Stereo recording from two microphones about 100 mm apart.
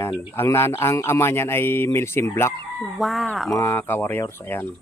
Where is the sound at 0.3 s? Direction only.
25° left (ahead or behind).